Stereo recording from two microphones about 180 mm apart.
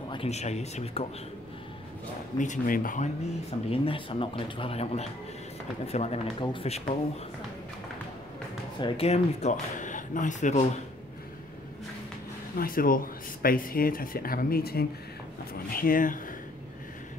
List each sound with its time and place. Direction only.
0.1 s speech: 35° left (ahead or behind)
2.3 s speech: 45° left (ahead or behind)
3.7 s speech: 30° left (ahead or behind)
8.7 s speech: 30° left (ahead or behind); by 10.6 s 45° left (ahead or behind)
12.5 s speech: 55° left (ahead or behind)